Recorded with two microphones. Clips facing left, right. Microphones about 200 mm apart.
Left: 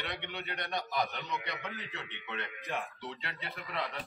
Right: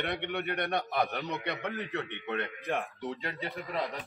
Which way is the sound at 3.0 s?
45° right (ahead or behind).